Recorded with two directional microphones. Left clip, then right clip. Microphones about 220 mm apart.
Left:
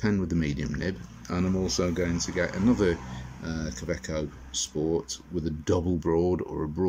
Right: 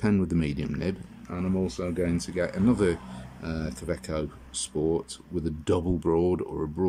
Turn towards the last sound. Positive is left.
turn(degrees=-5)  # may be behind; listen again after turning